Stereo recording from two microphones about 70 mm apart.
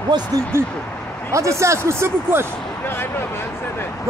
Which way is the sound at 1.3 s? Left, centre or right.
Right.